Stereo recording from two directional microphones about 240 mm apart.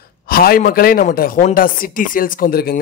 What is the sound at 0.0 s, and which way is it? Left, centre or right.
A man's voice, left.